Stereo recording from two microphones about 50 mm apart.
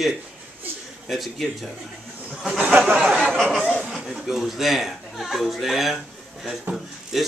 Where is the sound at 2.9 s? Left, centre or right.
Right.